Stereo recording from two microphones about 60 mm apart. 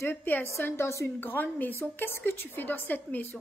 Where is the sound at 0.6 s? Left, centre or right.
Left.